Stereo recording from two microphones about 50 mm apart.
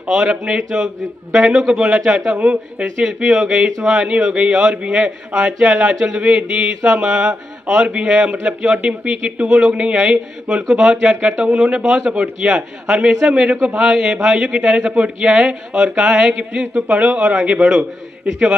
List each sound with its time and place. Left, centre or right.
0.1 s speech: centre
2.3 s speech: right
2.8 s speech: centre
15.4 s speech: centre